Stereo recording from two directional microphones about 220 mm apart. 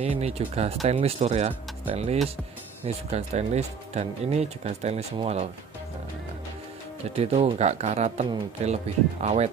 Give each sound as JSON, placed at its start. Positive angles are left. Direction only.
{"t": 0.0, "sound": "speech", "side_deg": -30}
{"t": 7.2, "sound": "speech", "side_deg": -30}